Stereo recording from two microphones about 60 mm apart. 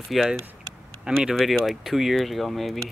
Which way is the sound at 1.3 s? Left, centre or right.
Centre.